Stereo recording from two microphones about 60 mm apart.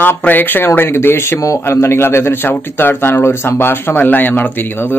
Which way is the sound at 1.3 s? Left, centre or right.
Left.